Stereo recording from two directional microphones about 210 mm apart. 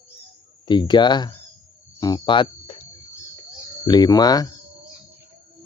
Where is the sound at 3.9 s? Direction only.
20° left (ahead or behind).